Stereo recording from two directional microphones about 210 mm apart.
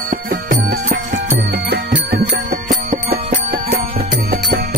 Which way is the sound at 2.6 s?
35° right (ahead or behind).